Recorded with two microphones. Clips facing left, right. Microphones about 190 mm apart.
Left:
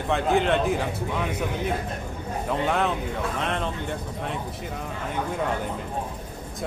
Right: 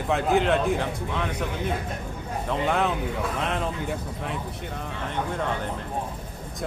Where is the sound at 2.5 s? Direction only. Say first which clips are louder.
Even; centre (ahead or behind).